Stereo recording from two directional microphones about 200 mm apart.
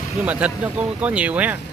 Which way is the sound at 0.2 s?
5° right (ahead or behind).